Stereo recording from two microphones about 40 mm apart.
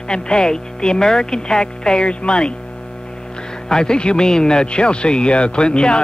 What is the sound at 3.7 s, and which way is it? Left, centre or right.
Speech, centre.